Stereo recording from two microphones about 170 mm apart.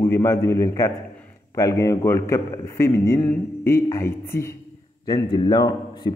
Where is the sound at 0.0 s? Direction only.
20° left (ahead or behind).